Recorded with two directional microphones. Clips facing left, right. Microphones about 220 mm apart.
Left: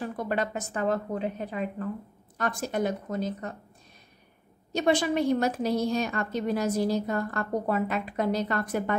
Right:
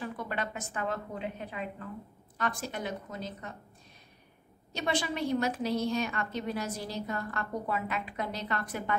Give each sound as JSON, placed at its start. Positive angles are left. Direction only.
{"t": 0.0, "sound": "a woman's voice", "side_deg": 40}
{"t": 4.7, "sound": "a woman's voice", "side_deg": 45}